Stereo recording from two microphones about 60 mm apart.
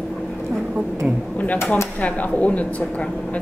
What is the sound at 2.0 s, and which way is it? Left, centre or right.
Speech, left.